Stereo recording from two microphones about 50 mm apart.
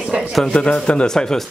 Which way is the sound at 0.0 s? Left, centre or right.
Right.